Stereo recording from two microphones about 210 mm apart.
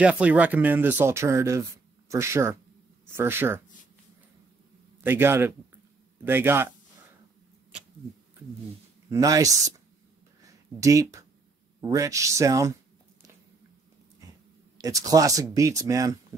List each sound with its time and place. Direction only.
0.0 s speech: 5° right (ahead or behind)
5.0 s speech: 10° right (ahead or behind)
9.1 s speech: 15° right (ahead or behind)
10.8 s speech: 15° right (ahead or behind)
14.8 s speech: 15° right (ahead or behind)